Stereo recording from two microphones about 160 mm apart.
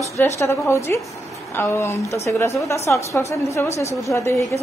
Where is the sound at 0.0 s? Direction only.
15° left (ahead or behind).